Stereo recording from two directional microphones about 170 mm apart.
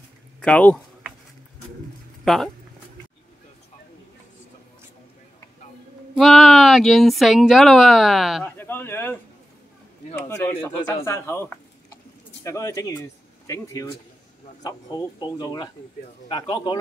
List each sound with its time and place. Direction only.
0.4 s speech: 10° left (ahead or behind)
2.2 s speech: centre (ahead or behind)
6.1 s speech: centre (ahead or behind)
8.5 s speech: 10° left (ahead or behind)
11.1 s a sound: 15° left (ahead or behind)
12.4 s speech: 20° left (ahead or behind)